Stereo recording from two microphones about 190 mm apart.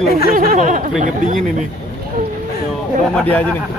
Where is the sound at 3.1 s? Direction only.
10° left (ahead or behind).